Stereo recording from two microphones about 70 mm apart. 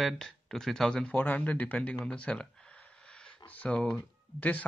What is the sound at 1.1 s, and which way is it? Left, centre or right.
Speech, left.